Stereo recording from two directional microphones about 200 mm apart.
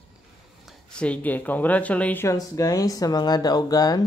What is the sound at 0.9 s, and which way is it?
Speech, 5° left (ahead or behind).